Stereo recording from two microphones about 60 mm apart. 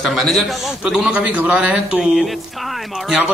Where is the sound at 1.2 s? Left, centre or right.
Right.